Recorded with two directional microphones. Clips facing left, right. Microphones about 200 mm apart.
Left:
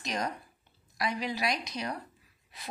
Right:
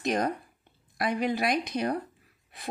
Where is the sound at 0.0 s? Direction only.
55° right (ahead or behind).